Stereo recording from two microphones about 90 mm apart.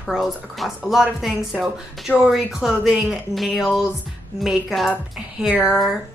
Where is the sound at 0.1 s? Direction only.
Centre (ahead or behind).